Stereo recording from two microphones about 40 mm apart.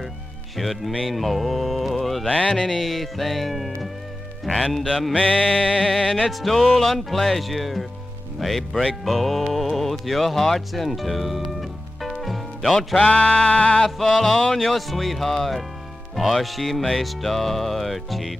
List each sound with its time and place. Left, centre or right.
0.6 s speech: centre
2.2 s music: left
2.8 s speech: centre
5.2 s music: left
5.5 s music: centre
6.3 s speech: centre
12.7 s music: centre
13.1 s bleat: left
13.7 s speech: centre